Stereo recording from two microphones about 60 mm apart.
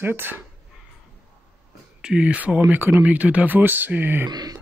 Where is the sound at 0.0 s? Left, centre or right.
Right.